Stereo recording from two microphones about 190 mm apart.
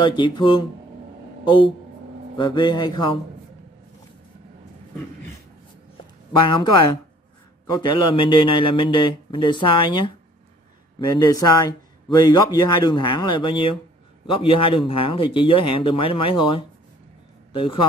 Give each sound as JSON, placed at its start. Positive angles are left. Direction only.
{"t": 0.0, "sound": "speech", "side_deg": 25}
{"t": 2.3, "sound": "speech", "side_deg": 25}
{"t": 6.3, "sound": "a man's voice", "side_deg": 25}